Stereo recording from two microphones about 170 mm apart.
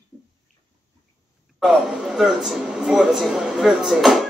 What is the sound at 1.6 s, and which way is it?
A man's voice, centre (ahead or behind).